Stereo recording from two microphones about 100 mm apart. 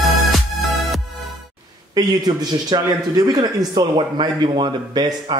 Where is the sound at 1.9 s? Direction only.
45° right (ahead or behind).